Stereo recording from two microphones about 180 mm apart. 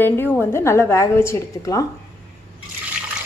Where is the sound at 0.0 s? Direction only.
10° left (ahead or behind).